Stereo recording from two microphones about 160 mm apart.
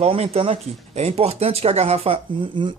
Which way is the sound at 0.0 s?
40° right (ahead or behind).